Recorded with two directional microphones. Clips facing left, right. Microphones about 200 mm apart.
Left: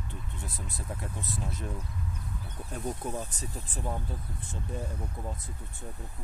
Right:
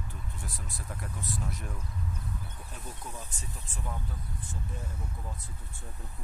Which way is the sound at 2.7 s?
45° left (ahead or behind).